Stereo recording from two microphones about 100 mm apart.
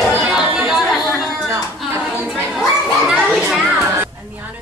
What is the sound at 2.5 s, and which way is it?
Children playing, centre (ahead or behind).